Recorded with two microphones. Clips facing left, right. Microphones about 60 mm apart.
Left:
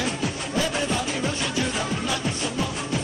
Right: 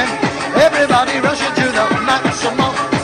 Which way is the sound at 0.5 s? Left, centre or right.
Right.